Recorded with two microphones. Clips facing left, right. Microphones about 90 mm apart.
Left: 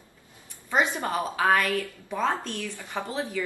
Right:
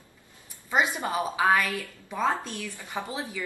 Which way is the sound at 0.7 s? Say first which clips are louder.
Left 1 dB; 15° right (ahead or behind).